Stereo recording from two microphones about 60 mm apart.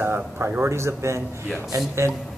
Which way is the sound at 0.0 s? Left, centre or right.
Right.